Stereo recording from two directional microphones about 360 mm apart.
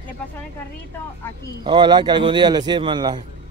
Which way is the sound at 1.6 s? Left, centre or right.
Centre.